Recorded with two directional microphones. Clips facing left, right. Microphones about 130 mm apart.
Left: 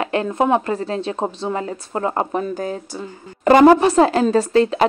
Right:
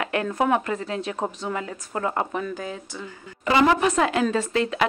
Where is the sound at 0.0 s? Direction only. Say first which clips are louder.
Left 5 dB; 25° left (ahead or behind).